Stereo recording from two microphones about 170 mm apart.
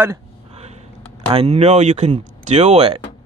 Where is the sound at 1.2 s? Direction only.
35° right (ahead or behind).